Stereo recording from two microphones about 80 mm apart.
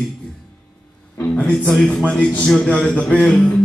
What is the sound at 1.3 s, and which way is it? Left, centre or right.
Speech, centre.